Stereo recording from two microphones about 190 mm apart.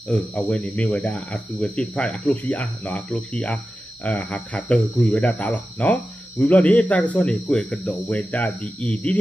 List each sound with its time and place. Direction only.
0.1 s speech: 10° left (ahead or behind)